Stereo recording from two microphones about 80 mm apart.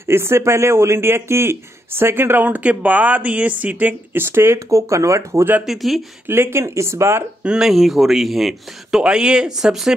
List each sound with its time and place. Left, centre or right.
0.0 s speech: right
5.7 s speech: centre
6.2 s speech: right
7.4 s speech: centre